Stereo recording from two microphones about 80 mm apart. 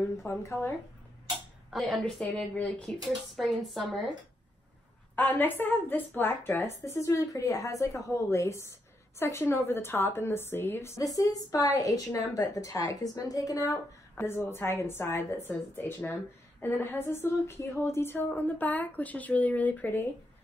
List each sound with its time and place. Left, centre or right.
0.3 s a woman's voice: left
1.7 s a woman's voice: centre
5.1 s speech: left
6.8 s a woman's voice: left
11.0 s a woman's voice: left
14.2 s a woman's voice: left